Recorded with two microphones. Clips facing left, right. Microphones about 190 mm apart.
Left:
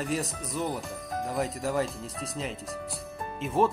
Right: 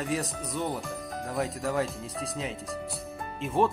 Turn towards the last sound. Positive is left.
turn(degrees=0)  # may be behind; listen again after turning